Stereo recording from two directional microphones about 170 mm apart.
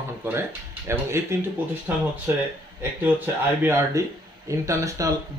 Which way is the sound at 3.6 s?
15° right (ahead or behind).